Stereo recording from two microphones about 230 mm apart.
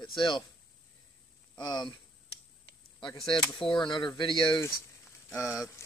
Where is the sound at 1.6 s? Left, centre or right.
Centre.